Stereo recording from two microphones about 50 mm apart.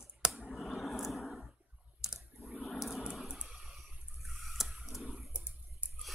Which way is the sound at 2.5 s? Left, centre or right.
Centre.